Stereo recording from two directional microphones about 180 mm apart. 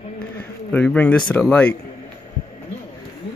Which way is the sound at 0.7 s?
5° left (ahead or behind).